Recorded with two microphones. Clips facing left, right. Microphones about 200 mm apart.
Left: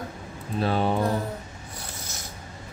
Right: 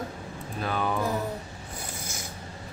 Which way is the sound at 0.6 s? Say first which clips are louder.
Left 5 dB; 30° left (ahead or behind).